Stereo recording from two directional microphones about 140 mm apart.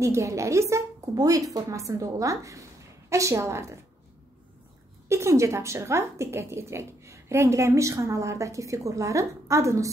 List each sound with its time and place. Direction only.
0.0 s a woman's voice: 20° right (ahead or behind)
5.0 s a woman's voice: 20° right (ahead or behind)